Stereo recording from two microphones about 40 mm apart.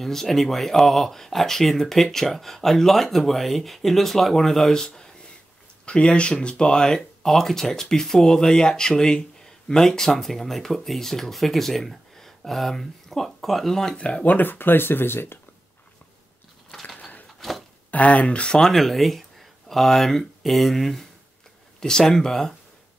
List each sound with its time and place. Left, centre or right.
0.0 s speech: centre
4.8 s a sound: centre
5.9 s speech: left
7.0 s speech: centre
13.9 s speech: left
14.2 s speech: left
16.8 s a sound: left
17.4 s a sound: centre
17.9 s speech: left
18.7 s speech: centre
21.7 s speech: centre